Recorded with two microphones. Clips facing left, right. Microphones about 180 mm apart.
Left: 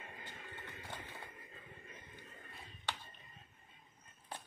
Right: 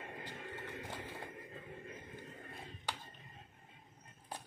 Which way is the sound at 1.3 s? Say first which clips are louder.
Right 7 dB; 60° right (ahead or behind).